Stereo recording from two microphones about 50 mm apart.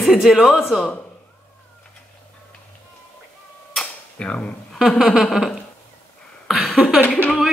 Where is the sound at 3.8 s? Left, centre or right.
Left.